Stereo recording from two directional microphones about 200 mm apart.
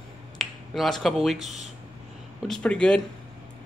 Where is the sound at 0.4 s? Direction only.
Centre (ahead or behind).